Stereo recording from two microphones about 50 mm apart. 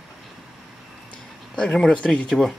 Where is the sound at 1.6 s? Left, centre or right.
Centre.